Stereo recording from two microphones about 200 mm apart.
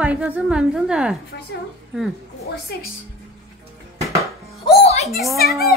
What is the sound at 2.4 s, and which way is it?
Speech, 50° left (ahead or behind).